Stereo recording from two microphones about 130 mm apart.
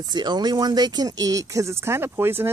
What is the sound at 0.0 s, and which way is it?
Speech, 35° right (ahead or behind).